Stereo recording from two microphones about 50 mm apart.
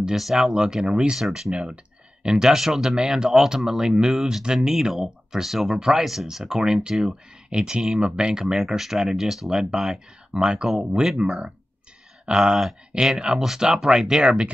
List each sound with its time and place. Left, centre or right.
0.0 s speech: centre